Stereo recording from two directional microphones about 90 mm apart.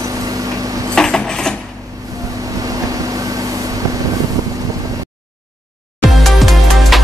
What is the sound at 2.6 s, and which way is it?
Vehicle, 40° right (ahead or behind).